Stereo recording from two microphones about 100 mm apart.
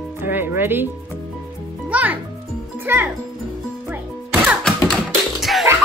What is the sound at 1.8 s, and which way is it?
Music, 15° right (ahead or behind).